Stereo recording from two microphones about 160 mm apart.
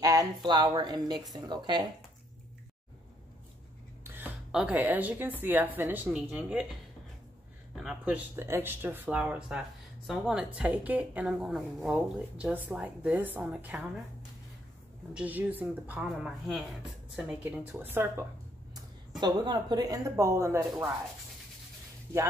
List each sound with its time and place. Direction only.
0.0 s speech: 20° right (ahead or behind)
4.0 s a sound: 15° right (ahead or behind)
4.5 s a woman's voice: 5° right (ahead or behind)
7.7 s a woman's voice: 5° right (ahead or behind)
15.1 s a woman's voice: 10° right (ahead or behind)
19.1 s speech: 25° right (ahead or behind)